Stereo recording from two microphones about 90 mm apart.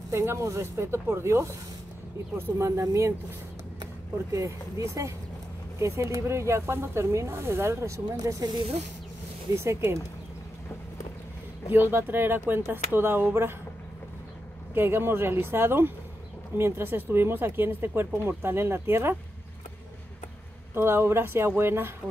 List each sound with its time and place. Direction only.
0.1 s speech: 30° right (ahead or behind)
4.3 s speech: 35° right (ahead or behind)
11.7 s speech: 20° right (ahead or behind)
14.7 s speech: 25° right (ahead or behind)
20.7 s speech: 25° right (ahead or behind)